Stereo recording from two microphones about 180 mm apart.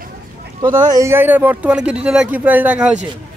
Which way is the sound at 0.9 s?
15° right (ahead or behind).